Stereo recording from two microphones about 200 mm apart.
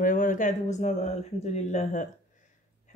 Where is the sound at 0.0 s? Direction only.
40° left (ahead or behind).